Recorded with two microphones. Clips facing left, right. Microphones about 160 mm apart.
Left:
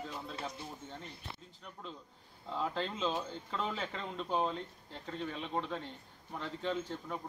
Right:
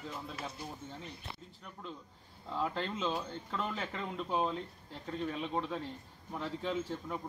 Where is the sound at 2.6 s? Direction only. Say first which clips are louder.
Even; centre (ahead or behind).